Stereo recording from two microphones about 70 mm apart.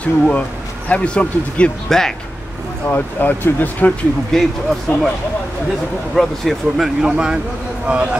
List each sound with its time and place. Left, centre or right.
0.0 s speech: centre
2.9 s speech: left
4.3 s speech: centre
6.1 s speech: centre